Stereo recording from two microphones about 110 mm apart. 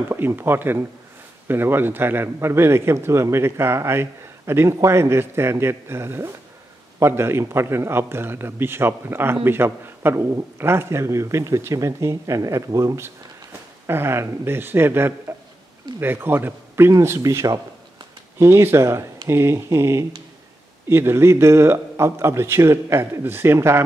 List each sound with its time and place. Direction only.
0.1 s a man's voice: 20° right (ahead or behind)